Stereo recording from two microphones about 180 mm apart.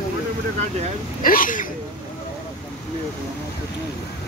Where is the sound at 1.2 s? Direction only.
50° left (ahead or behind).